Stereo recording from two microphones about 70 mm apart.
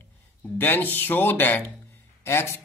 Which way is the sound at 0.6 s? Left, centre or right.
Left.